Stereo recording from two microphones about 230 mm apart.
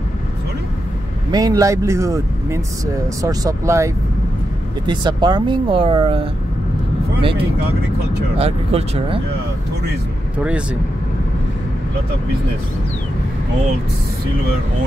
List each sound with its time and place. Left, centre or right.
1.3 s speech: centre
10.3 s speech: centre